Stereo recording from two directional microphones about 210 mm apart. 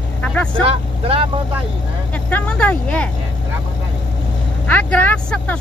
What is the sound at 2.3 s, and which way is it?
Speech, 5° left (ahead or behind).